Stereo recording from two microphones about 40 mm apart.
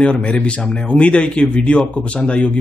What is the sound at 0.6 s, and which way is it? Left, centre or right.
A man's voice, left.